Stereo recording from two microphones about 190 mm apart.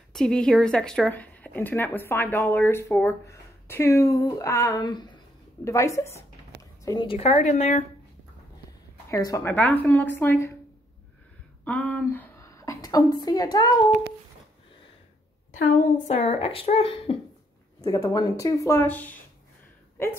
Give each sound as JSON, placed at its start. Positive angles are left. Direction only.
{"t": 0.1, "sound": "speech", "side_deg": 5}
{"t": 9.1, "sound": "speech", "side_deg": 15}
{"t": 11.6, "sound": "a sound", "side_deg": 5}
{"t": 13.2, "sound": "a woman's voice", "side_deg": 20}
{"t": 15.5, "sound": "speech", "side_deg": 40}